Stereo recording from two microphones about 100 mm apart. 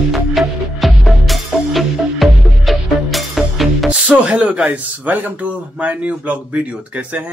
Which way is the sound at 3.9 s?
10° right (ahead or behind).